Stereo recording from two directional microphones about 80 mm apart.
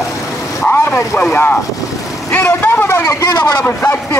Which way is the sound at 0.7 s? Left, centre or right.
Left.